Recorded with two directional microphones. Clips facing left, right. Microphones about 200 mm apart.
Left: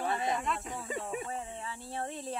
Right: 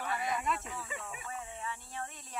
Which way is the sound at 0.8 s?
40° left (ahead or behind).